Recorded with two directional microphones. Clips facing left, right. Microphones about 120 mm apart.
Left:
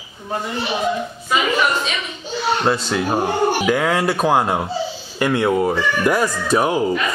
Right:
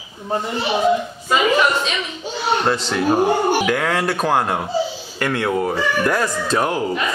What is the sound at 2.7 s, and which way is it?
A child's voice, 5° left (ahead or behind).